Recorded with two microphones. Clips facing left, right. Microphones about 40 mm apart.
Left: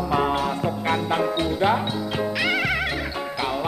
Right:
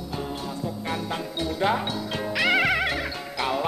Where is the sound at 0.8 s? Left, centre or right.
Left.